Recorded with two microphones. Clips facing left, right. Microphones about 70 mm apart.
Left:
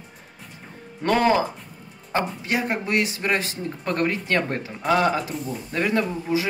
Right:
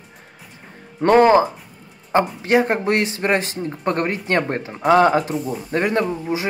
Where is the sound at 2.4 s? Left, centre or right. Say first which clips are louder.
Right 8 dB; right.